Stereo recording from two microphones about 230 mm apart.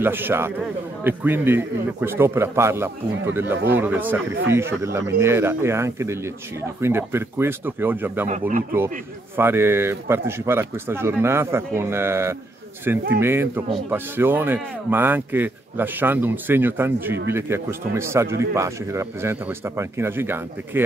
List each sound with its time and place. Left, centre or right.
0.0 s a man's voice: centre
8.3 s speech: right
9.4 s a man's voice: centre